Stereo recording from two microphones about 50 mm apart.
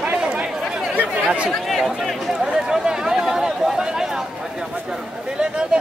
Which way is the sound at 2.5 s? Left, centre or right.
Centre.